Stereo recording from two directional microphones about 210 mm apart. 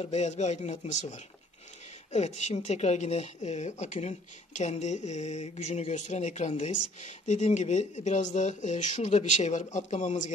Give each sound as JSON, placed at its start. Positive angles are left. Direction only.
{"t": 0.0, "sound": "speech", "side_deg": 30}